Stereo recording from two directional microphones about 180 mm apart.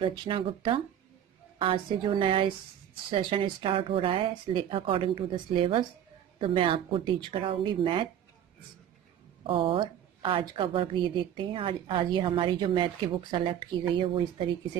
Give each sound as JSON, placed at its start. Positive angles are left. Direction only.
{"t": 0.0, "sound": "a woman's voice", "side_deg": -25}
{"t": 9.4, "sound": "a woman's voice", "side_deg": -30}